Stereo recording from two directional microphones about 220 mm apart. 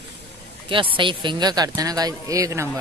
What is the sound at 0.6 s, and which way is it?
Speech, 25° right (ahead or behind).